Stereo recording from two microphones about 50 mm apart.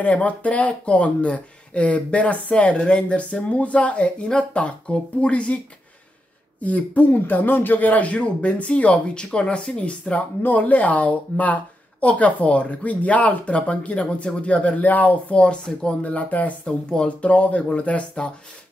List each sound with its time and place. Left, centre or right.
0.0 s speech: left
6.6 s speech: left
10.4 s speech: left
16.6 s speech: centre